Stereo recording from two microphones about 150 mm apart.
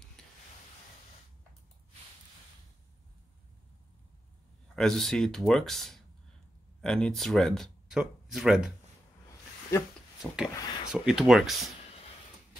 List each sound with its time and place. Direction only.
4.7 s speech: 5° left (ahead or behind)
10.2 s speech: 5° right (ahead or behind)